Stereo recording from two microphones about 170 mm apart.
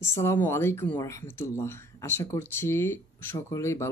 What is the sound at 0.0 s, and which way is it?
Speech, 15° left (ahead or behind).